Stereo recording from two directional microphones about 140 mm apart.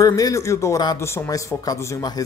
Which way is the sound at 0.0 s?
25° left (ahead or behind).